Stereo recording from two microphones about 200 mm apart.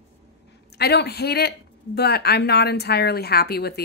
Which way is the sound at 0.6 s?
55° left (ahead or behind).